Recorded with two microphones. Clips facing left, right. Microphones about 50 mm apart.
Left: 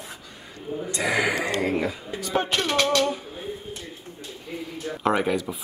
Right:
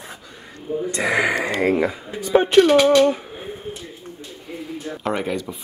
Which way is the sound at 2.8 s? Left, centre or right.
Right.